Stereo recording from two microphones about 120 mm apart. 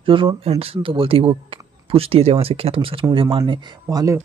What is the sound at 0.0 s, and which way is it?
Speech, 45° right (ahead or behind).